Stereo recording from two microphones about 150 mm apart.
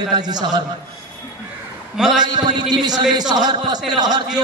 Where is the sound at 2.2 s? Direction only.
30° right (ahead or behind).